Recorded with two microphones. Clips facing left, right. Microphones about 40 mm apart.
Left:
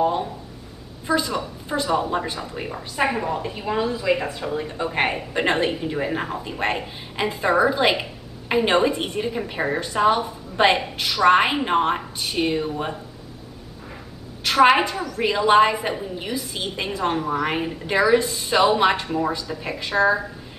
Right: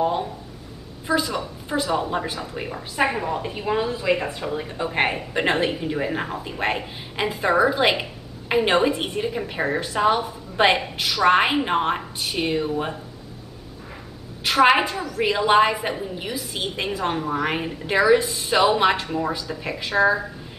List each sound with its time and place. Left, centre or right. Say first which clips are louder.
0.0 s a woman's voice: left 1 dB; centre
14.4 s a woman's voice: left 1 dB; centre